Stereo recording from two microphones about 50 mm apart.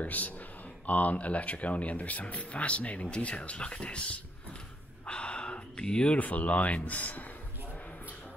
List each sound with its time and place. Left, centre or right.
0.0 s speech: left
5.0 s a sound: left
6.1 s speech: left